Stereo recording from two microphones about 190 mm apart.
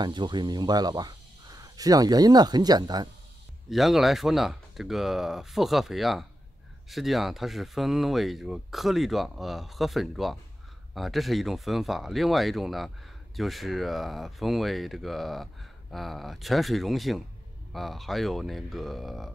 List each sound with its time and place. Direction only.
0.0 s speech: 25° right (ahead or behind)
3.7 s speech: centre (ahead or behind)